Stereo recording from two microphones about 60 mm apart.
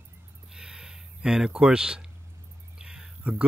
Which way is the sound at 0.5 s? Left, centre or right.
Centre.